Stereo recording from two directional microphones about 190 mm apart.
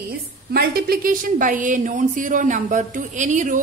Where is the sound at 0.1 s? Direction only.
55° right (ahead or behind).